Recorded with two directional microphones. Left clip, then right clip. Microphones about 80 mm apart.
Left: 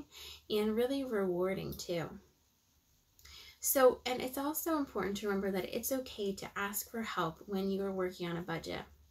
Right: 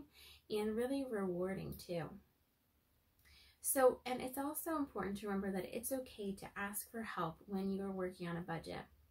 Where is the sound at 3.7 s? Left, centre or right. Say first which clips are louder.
Left 5 dB; left.